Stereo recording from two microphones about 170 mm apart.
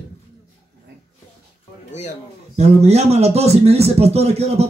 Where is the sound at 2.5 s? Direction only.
40° right (ahead or behind).